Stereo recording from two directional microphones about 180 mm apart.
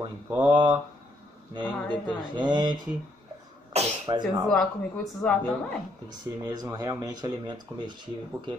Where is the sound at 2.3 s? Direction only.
25° right (ahead or behind).